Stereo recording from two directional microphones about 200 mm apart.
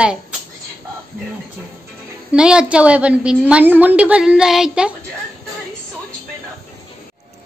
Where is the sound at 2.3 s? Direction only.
5° right (ahead or behind).